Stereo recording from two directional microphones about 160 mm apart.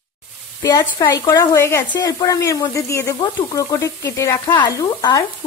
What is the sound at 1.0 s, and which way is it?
Speech, 20° left (ahead or behind).